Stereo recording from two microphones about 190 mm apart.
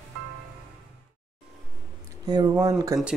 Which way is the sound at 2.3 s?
20° right (ahead or behind).